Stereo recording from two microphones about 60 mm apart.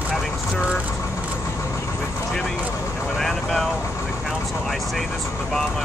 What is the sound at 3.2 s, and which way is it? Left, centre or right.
Speech, centre.